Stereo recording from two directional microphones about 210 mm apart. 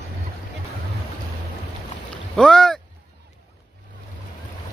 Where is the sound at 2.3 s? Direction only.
5° left (ahead or behind).